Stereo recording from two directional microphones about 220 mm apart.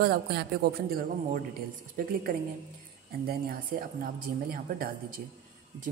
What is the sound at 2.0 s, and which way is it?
Speech, 40° right (ahead or behind).